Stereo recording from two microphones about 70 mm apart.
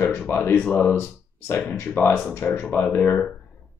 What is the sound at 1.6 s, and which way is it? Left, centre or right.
Speech, left.